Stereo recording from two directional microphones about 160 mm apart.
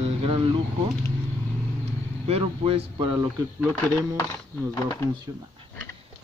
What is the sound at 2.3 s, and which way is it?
Speech, 35° right (ahead or behind).